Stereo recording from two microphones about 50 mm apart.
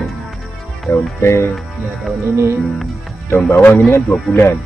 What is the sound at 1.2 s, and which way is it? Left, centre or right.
Speech, left.